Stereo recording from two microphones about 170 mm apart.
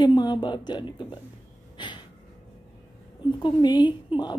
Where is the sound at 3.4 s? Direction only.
25° left (ahead or behind).